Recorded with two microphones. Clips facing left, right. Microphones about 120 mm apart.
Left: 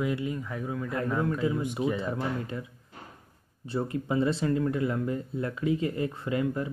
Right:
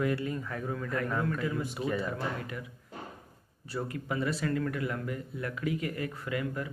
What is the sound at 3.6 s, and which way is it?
Speech, 25° left (ahead or behind).